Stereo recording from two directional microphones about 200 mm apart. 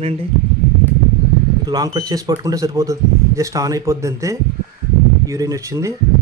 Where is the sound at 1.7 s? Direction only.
20° right (ahead or behind).